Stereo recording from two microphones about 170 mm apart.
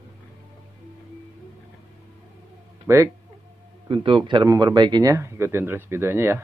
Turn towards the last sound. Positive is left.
turn(degrees=-15)  # may be behind; listen again after turning